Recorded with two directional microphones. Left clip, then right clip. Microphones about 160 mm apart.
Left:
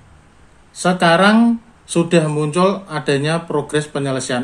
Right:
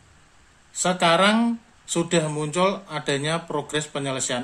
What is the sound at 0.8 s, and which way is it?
Speech, 10° right (ahead or behind).